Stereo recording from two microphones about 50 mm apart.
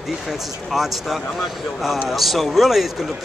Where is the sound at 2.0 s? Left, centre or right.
Centre.